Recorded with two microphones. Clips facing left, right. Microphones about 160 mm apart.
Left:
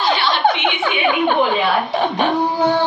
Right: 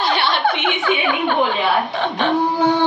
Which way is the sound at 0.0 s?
60° right (ahead or behind).